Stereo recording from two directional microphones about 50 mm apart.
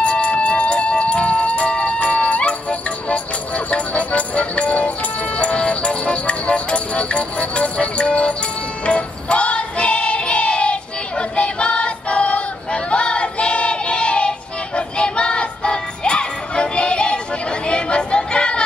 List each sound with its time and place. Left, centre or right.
0.0 s music: left